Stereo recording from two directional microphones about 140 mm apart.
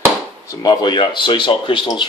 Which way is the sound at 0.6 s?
35° left (ahead or behind).